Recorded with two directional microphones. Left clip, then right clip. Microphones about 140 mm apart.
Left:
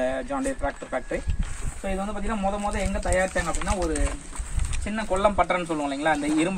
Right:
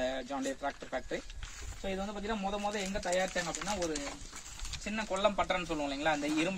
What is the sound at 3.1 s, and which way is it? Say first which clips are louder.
Speech: left 8 dB; 20° right (ahead or behind).